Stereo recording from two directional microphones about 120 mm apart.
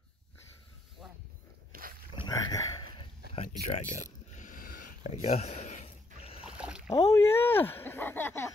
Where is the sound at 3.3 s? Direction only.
70° left (ahead or behind).